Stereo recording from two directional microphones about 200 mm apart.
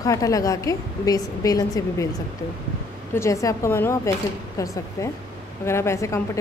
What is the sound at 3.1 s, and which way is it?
Speech, 15° left (ahead or behind).